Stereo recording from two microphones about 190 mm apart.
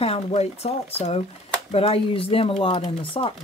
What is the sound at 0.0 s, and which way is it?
Speech, 30° left (ahead or behind).